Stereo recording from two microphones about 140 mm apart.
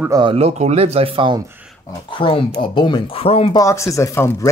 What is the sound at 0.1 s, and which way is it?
Speech, 35° right (ahead or behind).